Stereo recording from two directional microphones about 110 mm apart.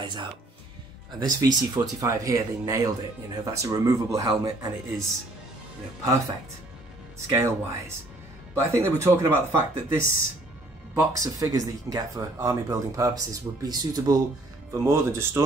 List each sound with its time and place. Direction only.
0.0 s speech: 45° right (ahead or behind)
7.3 s speech: 25° right (ahead or behind)
14.7 s speech: 25° right (ahead or behind)